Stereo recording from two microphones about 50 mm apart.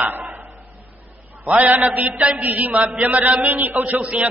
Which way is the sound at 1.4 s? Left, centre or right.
Right.